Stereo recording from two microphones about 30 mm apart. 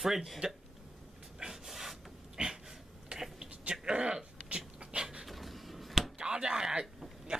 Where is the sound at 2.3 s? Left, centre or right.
Right.